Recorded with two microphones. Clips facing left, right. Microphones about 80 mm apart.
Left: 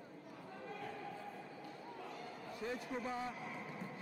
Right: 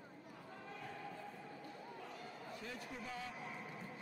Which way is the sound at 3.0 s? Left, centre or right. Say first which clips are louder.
Left 5 dB; left.